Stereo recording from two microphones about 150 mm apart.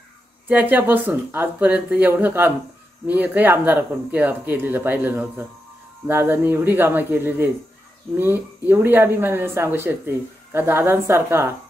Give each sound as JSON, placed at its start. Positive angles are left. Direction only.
{"t": 0.5, "sound": "speech", "side_deg": -10}